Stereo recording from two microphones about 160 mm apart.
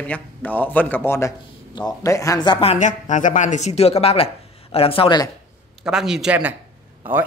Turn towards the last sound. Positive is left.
turn(degrees=-10)  # may be behind; listen again after turning